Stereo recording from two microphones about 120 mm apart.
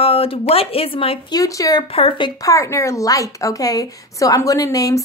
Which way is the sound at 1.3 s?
30° left (ahead or behind).